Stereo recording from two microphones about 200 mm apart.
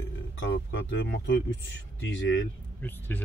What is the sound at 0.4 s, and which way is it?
Speech, 65° left (ahead or behind).